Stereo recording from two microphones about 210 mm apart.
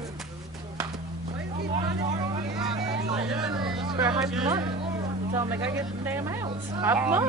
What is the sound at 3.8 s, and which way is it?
Vehicle, 20° right (ahead or behind).